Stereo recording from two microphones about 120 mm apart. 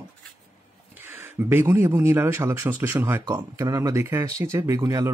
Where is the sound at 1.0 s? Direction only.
15° right (ahead or behind).